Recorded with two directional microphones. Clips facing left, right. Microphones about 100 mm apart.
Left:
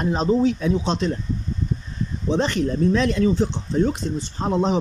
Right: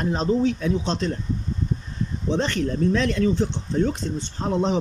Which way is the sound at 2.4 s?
15° left (ahead or behind).